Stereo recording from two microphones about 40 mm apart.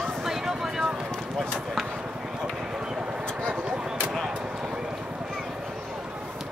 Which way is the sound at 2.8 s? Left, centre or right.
Centre.